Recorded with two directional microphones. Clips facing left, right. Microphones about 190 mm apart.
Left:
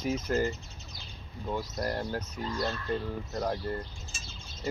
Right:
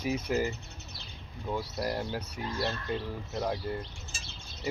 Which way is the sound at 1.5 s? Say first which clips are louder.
Even; 10° right (ahead or behind).